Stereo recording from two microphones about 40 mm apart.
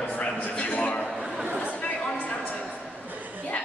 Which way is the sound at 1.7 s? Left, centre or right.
Left.